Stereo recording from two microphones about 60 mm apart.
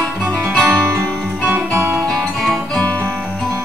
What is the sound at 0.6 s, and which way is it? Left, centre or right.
Music, right.